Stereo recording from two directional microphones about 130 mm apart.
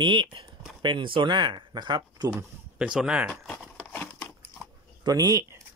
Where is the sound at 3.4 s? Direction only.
5° left (ahead or behind).